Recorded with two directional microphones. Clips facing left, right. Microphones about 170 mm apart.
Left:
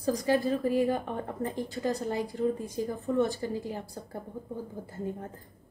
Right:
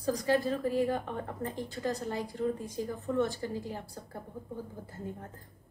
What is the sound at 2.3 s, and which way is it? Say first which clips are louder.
Speech: left 3 dB; 10° left (ahead or behind).